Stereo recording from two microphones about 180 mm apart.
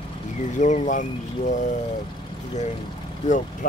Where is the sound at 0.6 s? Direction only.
40° left (ahead or behind).